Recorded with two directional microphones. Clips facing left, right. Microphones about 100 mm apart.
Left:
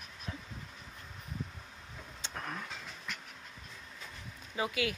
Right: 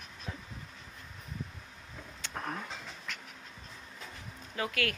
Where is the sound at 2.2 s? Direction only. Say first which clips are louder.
Right 2 dB; 20° left (ahead or behind).